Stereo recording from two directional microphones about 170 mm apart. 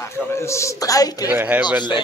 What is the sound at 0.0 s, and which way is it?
A man's voice, 15° left (ahead or behind).